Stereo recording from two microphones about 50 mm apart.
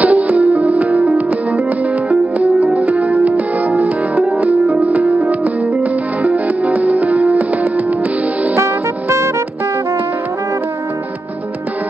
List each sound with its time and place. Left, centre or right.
0.0 s music: right